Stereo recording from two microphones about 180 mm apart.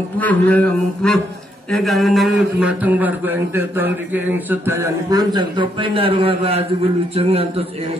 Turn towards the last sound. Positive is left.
turn(degrees=-35)  # may be behind; listen again after turning